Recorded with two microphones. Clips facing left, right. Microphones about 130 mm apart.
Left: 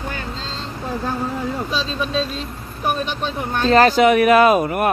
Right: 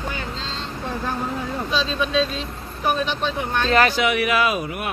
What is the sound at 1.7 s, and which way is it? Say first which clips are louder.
Speech: right 4 dB; 40° left (ahead or behind).